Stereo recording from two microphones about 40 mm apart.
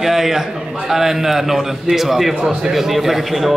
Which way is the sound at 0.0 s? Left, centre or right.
Centre.